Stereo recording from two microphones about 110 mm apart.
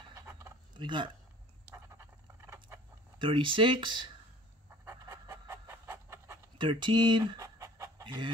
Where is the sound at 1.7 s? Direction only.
25° right (ahead or behind).